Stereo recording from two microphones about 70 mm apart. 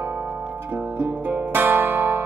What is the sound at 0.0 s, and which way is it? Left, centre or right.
Music, right.